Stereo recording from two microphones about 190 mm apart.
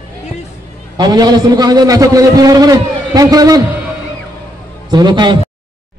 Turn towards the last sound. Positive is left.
turn(degrees=-25)  # may be behind; listen again after turning